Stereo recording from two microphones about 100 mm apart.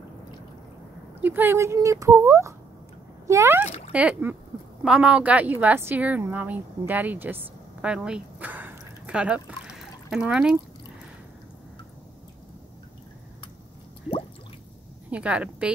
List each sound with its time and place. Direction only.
1.2 s speech: 20° right (ahead or behind)
3.9 s a woman's voice: 15° right (ahead or behind)
7.8 s a sound: 10° right (ahead or behind)
15.0 s a woman's voice: 15° right (ahead or behind)